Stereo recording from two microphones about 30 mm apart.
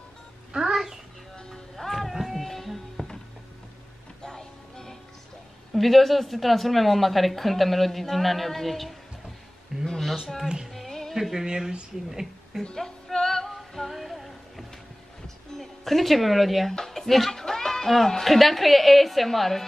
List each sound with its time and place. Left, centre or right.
0.5 s a sound: centre
1.3 s music: left
1.8 s music: centre
4.2 s music: left
5.7 s speech: centre
9.8 s a sound: centre
10.2 s speech: centre
10.7 s music: centre
12.7 s music: centre
13.5 s music: centre
18.2 s speech: centre